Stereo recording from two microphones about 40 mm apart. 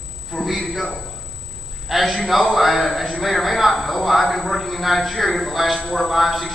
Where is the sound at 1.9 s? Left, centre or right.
Centre.